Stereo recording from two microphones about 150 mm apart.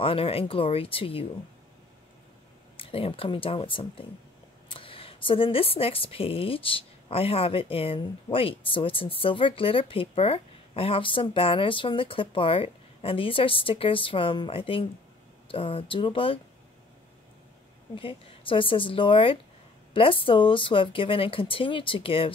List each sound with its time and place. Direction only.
0.0 s speech: 40° left (ahead or behind)
2.8 s speech: 40° left (ahead or behind)
17.9 s speech: 35° left (ahead or behind)